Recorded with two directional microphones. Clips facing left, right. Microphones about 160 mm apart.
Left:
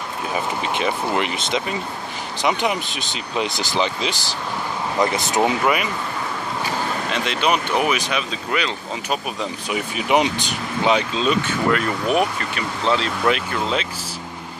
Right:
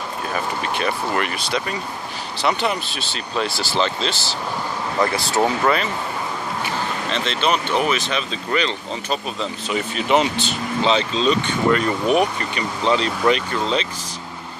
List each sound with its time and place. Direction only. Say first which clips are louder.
0.3 s speech: left 1 dB; 15° left (ahead or behind)
7.1 s speech: even; 10° left (ahead or behind)